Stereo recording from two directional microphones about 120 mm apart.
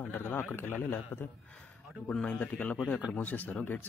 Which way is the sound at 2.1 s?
5° left (ahead or behind).